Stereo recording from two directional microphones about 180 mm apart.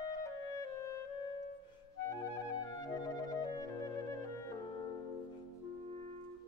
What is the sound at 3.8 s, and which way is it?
Music, 20° left (ahead or behind).